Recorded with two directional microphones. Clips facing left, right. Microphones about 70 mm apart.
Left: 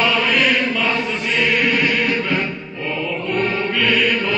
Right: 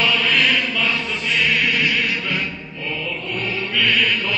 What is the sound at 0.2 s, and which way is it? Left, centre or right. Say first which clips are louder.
Mantra: left 2 dB; centre.